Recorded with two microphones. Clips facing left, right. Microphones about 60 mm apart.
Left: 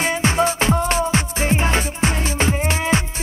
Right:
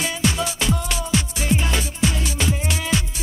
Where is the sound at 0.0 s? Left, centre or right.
Left.